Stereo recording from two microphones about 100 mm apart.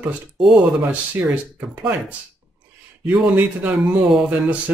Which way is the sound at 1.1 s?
15° right (ahead or behind).